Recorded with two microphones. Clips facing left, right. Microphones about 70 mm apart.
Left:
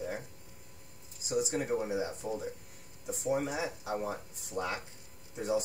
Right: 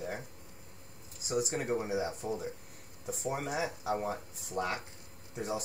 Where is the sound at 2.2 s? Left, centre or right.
Right.